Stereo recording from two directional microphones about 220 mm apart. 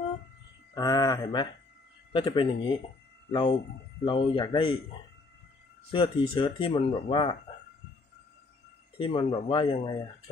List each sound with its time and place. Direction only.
0.7 s speech: 15° left (ahead or behind)
5.9 s speech: 25° left (ahead or behind)
8.9 s speech: 25° left (ahead or behind)